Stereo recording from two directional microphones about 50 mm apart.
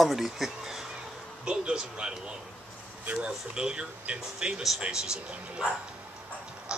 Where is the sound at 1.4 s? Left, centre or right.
Centre.